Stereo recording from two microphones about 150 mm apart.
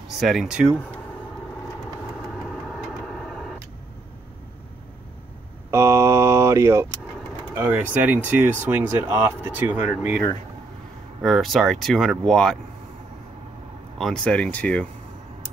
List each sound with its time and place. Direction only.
0.2 s speech: centre (ahead or behind)
2.4 s vehicle: centre (ahead or behind)
5.7 s vehicle: 20° right (ahead or behind)
7.5 s speech: 10° right (ahead or behind)
11.2 s speech: centre (ahead or behind)
13.9 s speech: 5° left (ahead or behind)